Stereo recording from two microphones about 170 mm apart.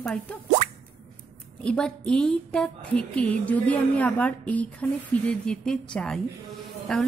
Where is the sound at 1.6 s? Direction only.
5° left (ahead or behind).